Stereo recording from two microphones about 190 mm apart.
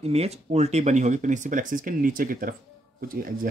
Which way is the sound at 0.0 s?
35° right (ahead or behind).